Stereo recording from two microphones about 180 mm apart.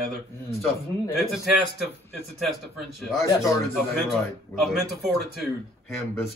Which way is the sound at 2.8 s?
Centre (ahead or behind).